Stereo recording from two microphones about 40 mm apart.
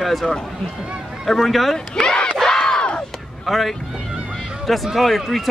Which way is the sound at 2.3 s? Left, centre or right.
Centre.